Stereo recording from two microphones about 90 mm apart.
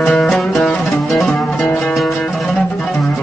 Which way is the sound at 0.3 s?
Centre (ahead or behind).